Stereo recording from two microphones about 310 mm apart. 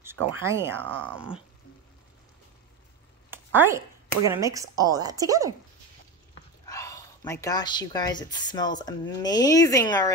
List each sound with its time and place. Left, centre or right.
0.4 s speech: centre
3.3 s speech: centre
6.6 s speech: centre